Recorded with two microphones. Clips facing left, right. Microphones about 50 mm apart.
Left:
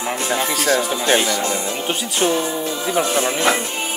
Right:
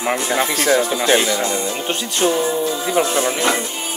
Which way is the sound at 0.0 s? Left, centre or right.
Right.